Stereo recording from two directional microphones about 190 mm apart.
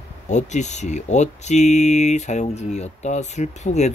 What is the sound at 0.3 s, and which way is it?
Speech, 40° left (ahead or behind).